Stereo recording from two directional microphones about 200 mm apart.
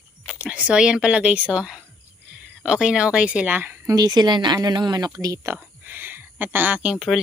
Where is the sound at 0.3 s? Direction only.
5° right (ahead or behind).